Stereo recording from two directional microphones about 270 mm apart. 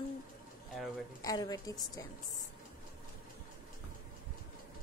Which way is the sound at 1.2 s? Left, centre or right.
Centre.